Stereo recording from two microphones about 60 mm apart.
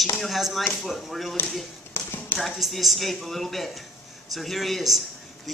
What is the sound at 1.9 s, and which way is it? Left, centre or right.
Tap, left.